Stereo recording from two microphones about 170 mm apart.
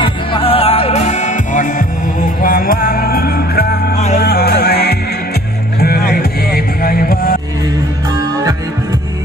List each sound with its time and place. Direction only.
0.0 s music: 30° left (ahead or behind); by 7.3 s 60° left (ahead or behind)